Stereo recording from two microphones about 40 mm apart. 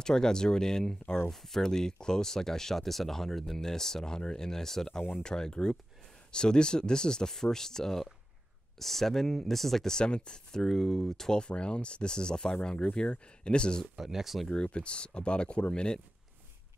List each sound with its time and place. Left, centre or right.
0.0 s speech: centre
1.3 s speech: centre
9.9 s speech: left
11.4 s speech: left
13.9 s speech: centre
14.5 s speech: left